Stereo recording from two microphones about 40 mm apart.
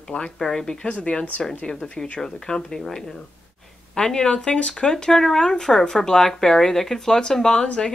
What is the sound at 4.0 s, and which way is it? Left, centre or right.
Speech, centre.